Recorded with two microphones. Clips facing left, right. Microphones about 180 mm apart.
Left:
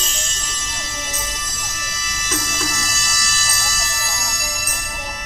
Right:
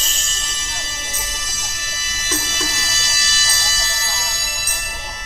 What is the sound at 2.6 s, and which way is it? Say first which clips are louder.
Music: left 1 dB; 25° right (ahead or behind).